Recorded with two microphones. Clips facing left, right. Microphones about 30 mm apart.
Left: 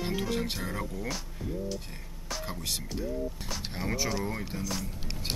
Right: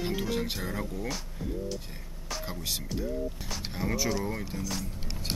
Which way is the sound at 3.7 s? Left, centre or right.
Centre.